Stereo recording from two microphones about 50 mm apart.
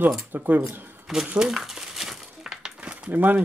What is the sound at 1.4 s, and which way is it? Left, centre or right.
Crumpling, centre.